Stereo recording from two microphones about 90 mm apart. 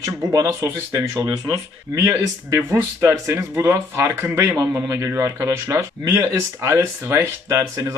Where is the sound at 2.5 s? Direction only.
30° right (ahead or behind).